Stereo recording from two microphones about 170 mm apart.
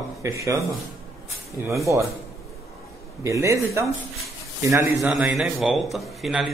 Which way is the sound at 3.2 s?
20° right (ahead or behind).